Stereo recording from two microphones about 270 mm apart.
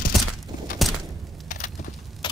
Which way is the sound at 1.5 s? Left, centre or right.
Left.